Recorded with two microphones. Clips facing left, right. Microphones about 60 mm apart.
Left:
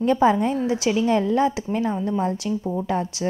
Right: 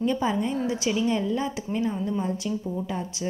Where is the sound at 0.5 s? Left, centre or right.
Centre.